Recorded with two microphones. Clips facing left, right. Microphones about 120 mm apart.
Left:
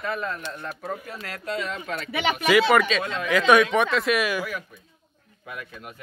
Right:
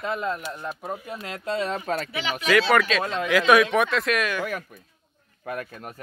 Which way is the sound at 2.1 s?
60° left (ahead or behind).